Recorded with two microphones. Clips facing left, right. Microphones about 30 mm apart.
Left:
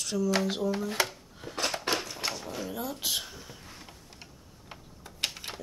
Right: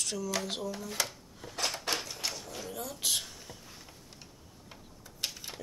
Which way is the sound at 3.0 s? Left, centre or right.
Centre.